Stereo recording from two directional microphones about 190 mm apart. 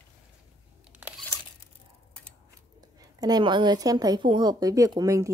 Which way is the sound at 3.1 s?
20° right (ahead or behind).